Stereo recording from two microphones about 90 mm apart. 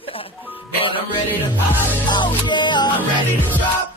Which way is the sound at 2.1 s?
60° left (ahead or behind).